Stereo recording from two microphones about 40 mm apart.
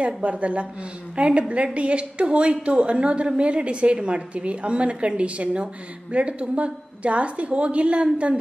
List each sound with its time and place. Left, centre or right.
0.0 s a woman's voice: right